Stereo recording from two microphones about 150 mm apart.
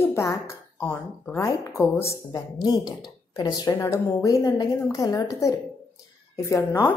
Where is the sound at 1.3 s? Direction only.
20° left (ahead or behind).